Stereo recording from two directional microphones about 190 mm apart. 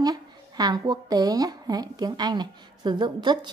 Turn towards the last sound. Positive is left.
turn(degrees=-25)  # may be behind; listen again after turning